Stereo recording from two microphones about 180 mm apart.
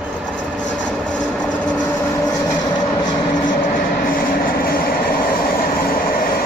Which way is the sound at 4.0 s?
55° left (ahead or behind).